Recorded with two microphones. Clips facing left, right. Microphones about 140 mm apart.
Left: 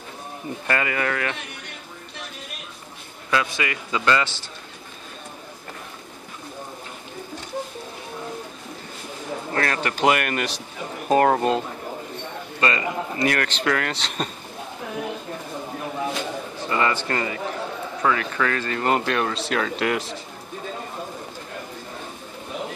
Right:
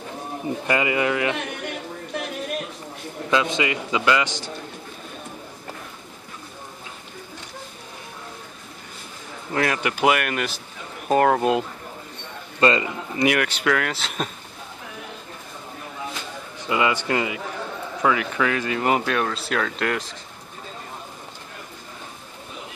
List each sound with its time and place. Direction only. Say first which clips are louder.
0.7 s a man's voice: right 2 dB; 15° right (ahead or behind)
3.3 s a man's voice: right 3 dB; 20° right (ahead or behind)
9.5 s speech: right 2 dB; 15° right (ahead or behind)
12.5 s a man's voice: right 5 dB; 25° right (ahead or behind)
13.2 s speech: right 3 dB; 10° right (ahead or behind)
16.6 s a man's voice: right 1 dB; 15° right (ahead or behind); by 20.2 s 5° left (ahead or behind)